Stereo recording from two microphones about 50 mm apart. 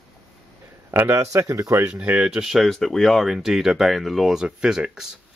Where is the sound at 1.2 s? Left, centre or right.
Right.